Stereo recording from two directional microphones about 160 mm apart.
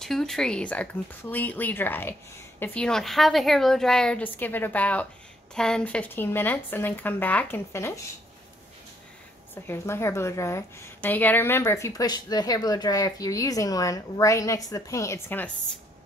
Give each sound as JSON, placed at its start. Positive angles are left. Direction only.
{"t": 0.0, "sound": "a woman's voice", "side_deg": 0}
{"t": 9.7, "sound": "a woman's voice", "side_deg": 15}